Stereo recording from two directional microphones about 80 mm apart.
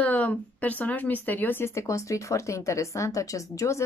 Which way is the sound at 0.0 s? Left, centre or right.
Centre.